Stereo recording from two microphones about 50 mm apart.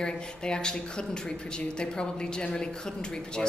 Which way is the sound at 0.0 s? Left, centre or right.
Centre.